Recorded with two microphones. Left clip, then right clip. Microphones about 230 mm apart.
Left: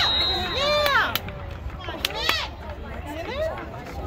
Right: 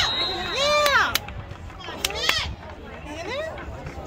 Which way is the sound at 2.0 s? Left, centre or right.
Right.